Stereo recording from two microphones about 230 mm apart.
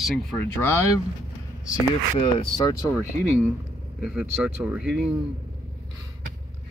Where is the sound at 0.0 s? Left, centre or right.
Centre.